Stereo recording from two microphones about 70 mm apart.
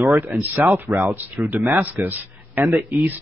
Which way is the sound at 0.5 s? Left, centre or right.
Right.